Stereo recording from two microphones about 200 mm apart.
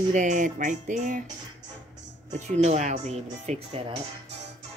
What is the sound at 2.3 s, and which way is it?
A woman's voice, 35° right (ahead or behind).